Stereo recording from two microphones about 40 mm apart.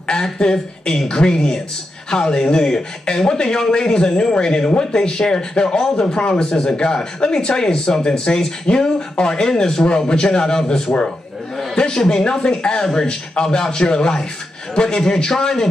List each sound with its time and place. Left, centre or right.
0.0 s a man's voice: left